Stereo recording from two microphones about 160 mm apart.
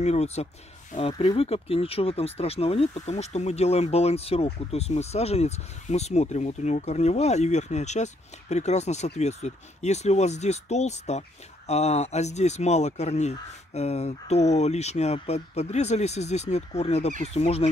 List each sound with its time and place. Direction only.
0.0 s speech: 40° left (ahead or behind)